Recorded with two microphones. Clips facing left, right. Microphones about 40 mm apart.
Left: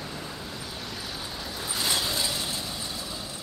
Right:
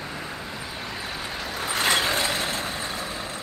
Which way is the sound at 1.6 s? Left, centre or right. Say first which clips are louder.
Right 6 dB; right.